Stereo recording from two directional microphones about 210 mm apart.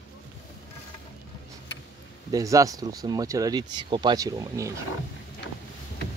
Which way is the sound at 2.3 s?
15° right (ahead or behind).